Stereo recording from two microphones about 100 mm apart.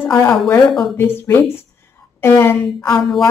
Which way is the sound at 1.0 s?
25° left (ahead or behind).